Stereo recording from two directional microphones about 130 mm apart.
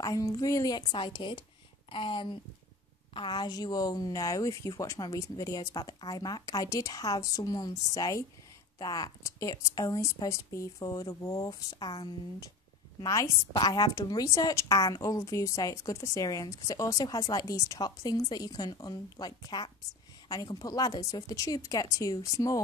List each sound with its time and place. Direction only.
0.0 s a woman's voice: 30° left (ahead or behind)